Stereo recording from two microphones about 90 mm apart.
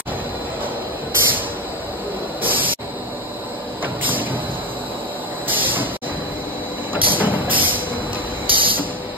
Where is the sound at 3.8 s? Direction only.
20° right (ahead or behind).